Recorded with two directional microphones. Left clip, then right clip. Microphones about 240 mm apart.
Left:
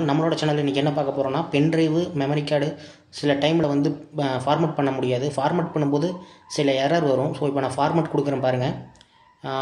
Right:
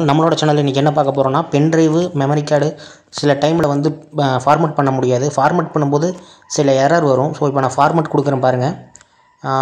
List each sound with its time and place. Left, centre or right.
0.0 s speech: right
4.8 s speech: centre
6.6 s speech: centre
6.9 s speech: right